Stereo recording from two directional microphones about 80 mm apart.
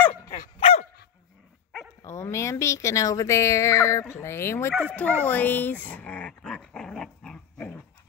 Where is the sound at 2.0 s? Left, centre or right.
Left.